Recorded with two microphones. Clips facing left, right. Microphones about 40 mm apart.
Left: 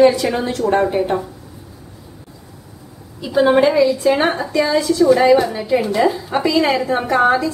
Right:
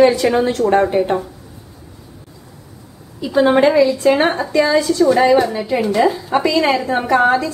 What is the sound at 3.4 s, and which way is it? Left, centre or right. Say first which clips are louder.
A woman's voice: right 1 dB; centre.